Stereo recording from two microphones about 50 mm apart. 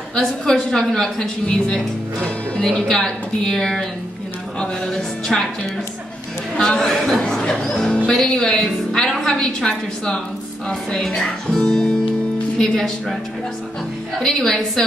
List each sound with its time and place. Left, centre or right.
0.1 s speech: centre
6.6 s speech: centre
14.2 s speech: centre